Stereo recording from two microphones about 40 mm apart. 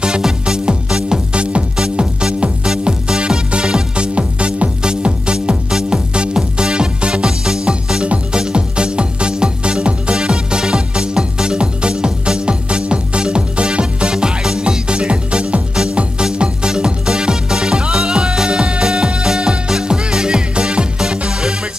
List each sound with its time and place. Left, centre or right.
0.0 s music: right